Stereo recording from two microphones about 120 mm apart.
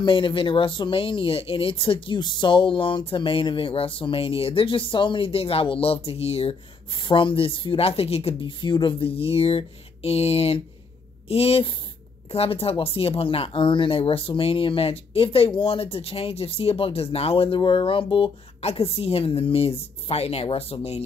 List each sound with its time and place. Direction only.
0.0 s speech: 45° left (ahead or behind)
6.9 s speech: 40° left (ahead or behind)
8.4 s speech: 40° left (ahead or behind); by 21.0 s 60° left (ahead or behind)